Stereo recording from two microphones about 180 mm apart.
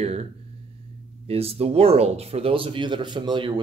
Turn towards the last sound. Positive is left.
turn(degrees=-25)  # may be behind; listen again after turning